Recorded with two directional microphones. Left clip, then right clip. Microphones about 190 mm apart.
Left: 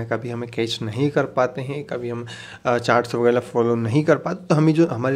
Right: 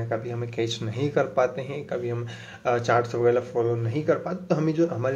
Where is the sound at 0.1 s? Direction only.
30° left (ahead or behind).